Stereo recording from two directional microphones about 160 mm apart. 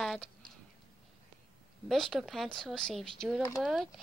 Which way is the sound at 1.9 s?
Centre (ahead or behind).